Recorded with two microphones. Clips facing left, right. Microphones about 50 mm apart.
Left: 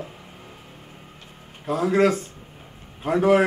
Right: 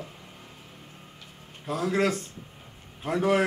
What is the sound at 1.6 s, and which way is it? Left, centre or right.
A man's voice, centre.